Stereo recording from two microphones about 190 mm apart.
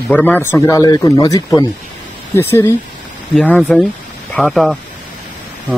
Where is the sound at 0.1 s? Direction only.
10° left (ahead or behind).